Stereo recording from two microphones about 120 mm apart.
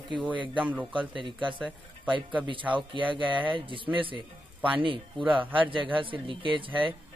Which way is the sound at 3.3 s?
45° right (ahead or behind).